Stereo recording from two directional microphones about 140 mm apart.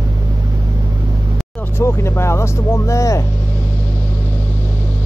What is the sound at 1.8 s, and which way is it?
Speech, 20° left (ahead or behind).